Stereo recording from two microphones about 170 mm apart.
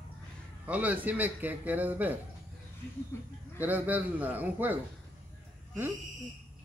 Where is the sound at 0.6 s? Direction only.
10° right (ahead or behind).